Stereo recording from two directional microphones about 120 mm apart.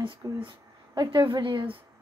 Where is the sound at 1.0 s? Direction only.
40° right (ahead or behind).